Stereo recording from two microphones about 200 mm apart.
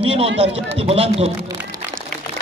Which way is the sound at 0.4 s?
30° right (ahead or behind).